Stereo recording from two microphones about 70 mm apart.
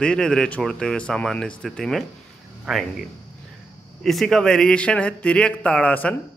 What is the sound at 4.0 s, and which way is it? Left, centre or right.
A man's voice, centre.